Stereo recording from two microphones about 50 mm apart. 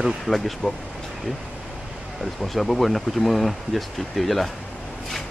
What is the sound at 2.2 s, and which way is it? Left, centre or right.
Speech, centre.